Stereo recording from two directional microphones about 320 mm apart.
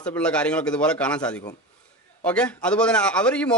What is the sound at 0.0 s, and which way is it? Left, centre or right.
A man's voice, centre.